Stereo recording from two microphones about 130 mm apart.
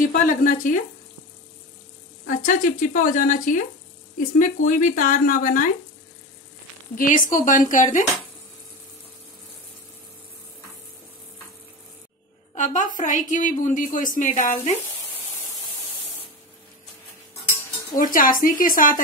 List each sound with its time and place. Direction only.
0.0 s speech: 90° left
2.2 s speech: 85° left
4.4 s speech: 75° left (ahead or behind)
7.0 s speech: 90° left
12.5 s a woman's voice: 70° left (ahead or behind)
17.9 s speech: 90° left